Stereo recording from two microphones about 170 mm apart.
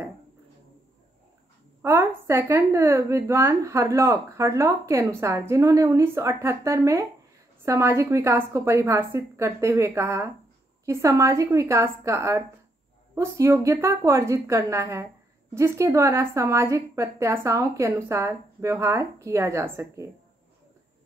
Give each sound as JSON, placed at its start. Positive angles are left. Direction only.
{"t": 1.8, "sound": "a woman's voice", "side_deg": -15}